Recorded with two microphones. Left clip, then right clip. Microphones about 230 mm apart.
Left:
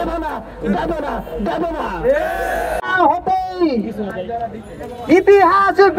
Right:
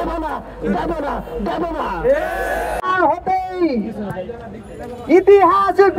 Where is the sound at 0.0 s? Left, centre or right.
Left.